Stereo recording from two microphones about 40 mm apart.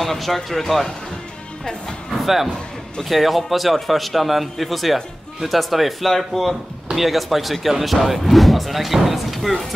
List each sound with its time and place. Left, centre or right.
0.0 s a man's voice: centre
1.6 s speech: centre
2.2 s a man's voice: centre